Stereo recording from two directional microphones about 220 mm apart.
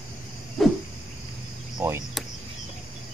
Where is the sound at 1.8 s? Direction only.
10° right (ahead or behind).